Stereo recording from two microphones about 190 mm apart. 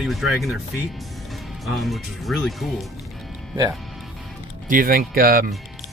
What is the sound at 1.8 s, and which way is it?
Speech, centre (ahead or behind).